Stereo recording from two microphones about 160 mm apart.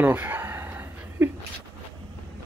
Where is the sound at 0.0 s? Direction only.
10° right (ahead or behind).